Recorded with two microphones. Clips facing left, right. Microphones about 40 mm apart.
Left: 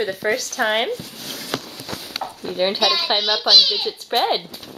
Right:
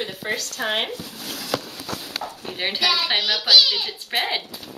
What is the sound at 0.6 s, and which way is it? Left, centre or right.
Speech, left.